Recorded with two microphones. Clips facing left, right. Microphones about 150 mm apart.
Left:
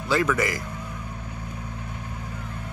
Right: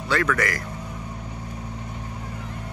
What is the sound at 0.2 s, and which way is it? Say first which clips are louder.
Speech: even; 20° left (ahead or behind).